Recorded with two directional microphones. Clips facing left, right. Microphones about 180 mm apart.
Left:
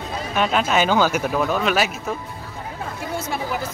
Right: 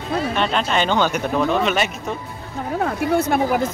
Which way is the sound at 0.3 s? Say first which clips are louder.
Left 4 dB; 5° left (ahead or behind).